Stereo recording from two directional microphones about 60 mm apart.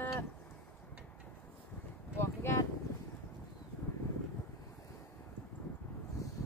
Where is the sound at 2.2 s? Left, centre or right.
Left.